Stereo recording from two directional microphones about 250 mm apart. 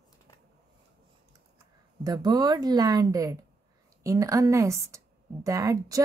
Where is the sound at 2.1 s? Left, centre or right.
Centre.